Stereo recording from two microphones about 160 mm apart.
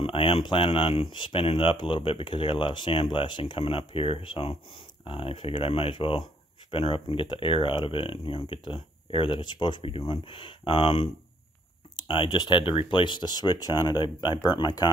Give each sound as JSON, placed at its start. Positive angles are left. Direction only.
{"t": 0.0, "sound": "speech", "side_deg": 35}
{"t": 12.1, "sound": "speech", "side_deg": 30}